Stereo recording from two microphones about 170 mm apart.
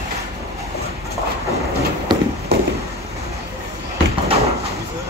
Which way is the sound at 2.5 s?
70° right (ahead or behind).